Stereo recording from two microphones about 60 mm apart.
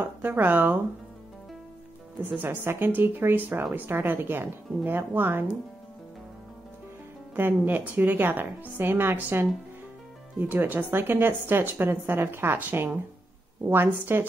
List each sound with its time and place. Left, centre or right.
0.0 s speech: right
2.2 s speech: right
7.3 s speech: right
13.7 s speech: right